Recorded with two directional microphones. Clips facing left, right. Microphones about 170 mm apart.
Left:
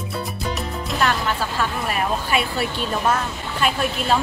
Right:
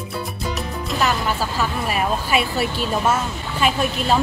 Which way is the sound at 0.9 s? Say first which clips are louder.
Right 1 dB; 5° right (ahead or behind).